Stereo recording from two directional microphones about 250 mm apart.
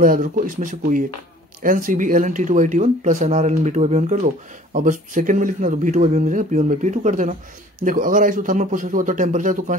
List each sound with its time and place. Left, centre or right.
0.0 s a man's voice: right